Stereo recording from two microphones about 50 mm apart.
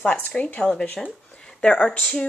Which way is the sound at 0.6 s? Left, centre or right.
Centre.